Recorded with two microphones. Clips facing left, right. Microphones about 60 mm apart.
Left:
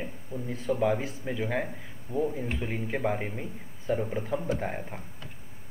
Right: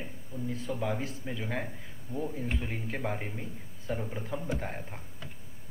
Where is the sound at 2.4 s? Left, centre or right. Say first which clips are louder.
Left 3 dB; centre.